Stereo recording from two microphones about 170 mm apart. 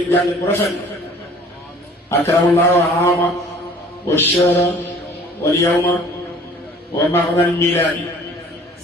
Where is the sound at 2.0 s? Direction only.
15° left (ahead or behind).